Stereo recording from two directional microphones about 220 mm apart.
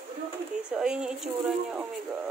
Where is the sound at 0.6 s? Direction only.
5° right (ahead or behind).